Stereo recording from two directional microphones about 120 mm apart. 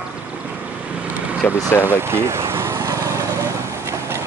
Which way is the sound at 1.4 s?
10° left (ahead or behind).